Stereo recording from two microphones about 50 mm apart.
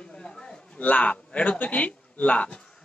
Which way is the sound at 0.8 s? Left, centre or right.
Left.